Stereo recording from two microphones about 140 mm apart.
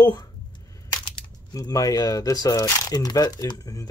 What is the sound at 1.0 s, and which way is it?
Speech, 25° left (ahead or behind).